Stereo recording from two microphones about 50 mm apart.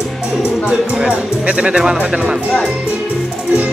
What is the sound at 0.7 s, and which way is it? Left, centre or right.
Music, centre.